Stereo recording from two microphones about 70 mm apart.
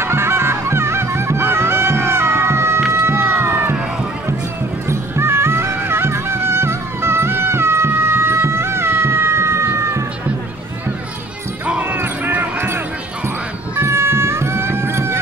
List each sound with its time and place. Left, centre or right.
0.0 s music: right
3.1 s music: right
4.8 s music: right
11.6 s clip-clop: right
13.7 s music: right